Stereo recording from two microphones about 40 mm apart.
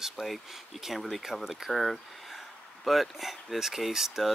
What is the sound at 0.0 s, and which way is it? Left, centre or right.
Speech, centre.